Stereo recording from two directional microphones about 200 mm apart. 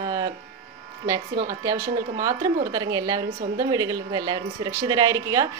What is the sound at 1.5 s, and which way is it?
Speech, 15° right (ahead or behind).